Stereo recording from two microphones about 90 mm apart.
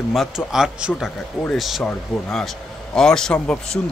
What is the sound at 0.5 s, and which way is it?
Speech, 10° right (ahead or behind).